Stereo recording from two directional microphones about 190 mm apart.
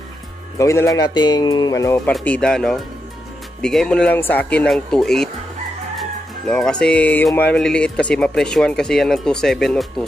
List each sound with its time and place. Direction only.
0.6 s speech: 15° left (ahead or behind)
2.1 s music: 5° left (ahead or behind)